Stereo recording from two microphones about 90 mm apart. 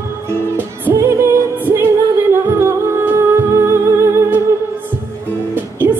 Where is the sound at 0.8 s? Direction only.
30° right (ahead or behind).